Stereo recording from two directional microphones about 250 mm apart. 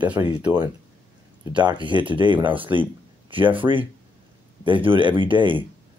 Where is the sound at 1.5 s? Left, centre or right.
Centre.